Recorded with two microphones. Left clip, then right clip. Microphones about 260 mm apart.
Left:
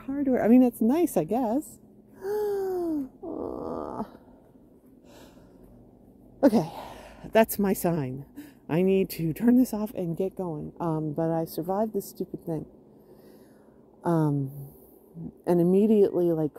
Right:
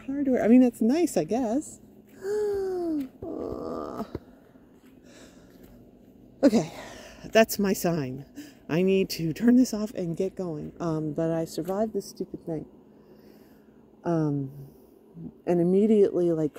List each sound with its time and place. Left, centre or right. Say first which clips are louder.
0.0 s a woman's voice: even; centre
2.1 s wail: right 1 dB; centre
6.4 s speech: even; centre
12.0 s a woman's voice: even; left
14.0 s a woman's voice: left 1 dB; centre
15.4 s speech: even; centre